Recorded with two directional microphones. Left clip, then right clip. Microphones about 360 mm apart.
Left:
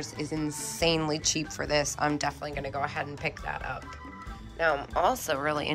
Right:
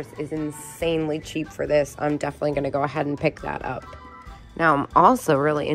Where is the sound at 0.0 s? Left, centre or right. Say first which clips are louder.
Right 4 dB; centre.